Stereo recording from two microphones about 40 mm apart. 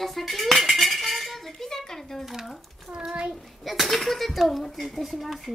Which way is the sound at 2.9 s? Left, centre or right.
Right.